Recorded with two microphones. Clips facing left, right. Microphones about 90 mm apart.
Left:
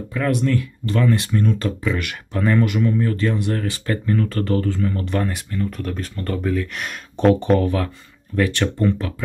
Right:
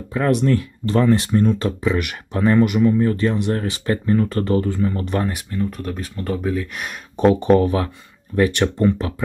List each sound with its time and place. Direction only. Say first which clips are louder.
0.1 s speech: right 3 dB; 25° right (ahead or behind); by 7.3 s 5° right (ahead or behind)
7.6 s speech: right 2 dB; 20° right (ahead or behind)